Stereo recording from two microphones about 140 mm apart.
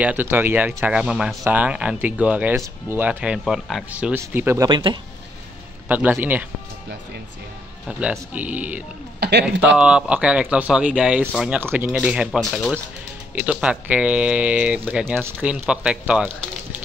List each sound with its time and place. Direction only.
0.0 s speech: 10° right (ahead or behind)
3.9 s speech: 15° right (ahead or behind)
4.6 s speech: 30° right (ahead or behind)
5.9 s speech: 10° right (ahead or behind)
8.0 s speech: 10° right (ahead or behind)
13.3 s speech: 10° right (ahead or behind)